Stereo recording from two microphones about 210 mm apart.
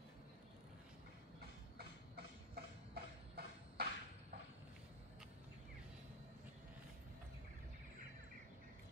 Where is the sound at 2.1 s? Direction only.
45° right (ahead or behind).